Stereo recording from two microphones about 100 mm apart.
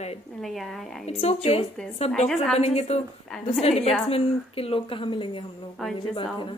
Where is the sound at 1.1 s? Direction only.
90° left.